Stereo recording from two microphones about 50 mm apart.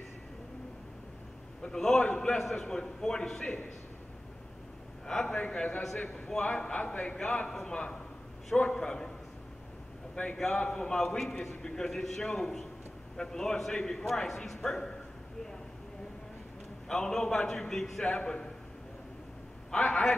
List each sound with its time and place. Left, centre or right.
1.6 s a man's voice: centre
2.0 s a man's voice: left
2.3 s a man's voice: centre
5.0 s a man's voice: centre
5.4 s a man's voice: left
5.8 s a man's voice: centre
10.3 s a man's voice: centre
16.8 s a man's voice: centre
18.0 s a man's voice: centre
19.8 s a man's voice: centre